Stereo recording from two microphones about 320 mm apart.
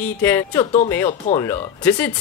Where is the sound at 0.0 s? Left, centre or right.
Centre.